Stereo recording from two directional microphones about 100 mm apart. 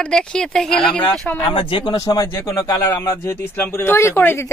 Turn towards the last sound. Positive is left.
turn(degrees=20)  # may be behind; listen again after turning